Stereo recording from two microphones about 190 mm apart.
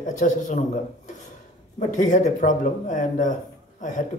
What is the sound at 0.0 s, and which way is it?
Speech, 40° left (ahead or behind).